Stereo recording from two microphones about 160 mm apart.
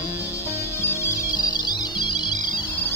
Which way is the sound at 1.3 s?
25° left (ahead or behind).